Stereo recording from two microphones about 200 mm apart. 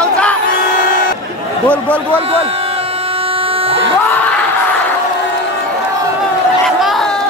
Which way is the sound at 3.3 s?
30° right (ahead or behind).